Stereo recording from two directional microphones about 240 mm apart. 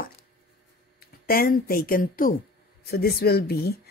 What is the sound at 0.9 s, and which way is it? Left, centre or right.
Speech, left.